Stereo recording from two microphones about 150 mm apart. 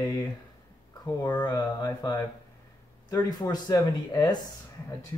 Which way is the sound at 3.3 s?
25° left (ahead or behind).